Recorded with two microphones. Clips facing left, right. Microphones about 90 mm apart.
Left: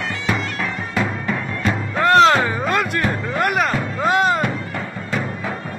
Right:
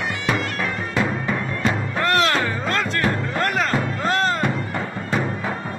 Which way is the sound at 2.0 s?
20° left (ahead or behind).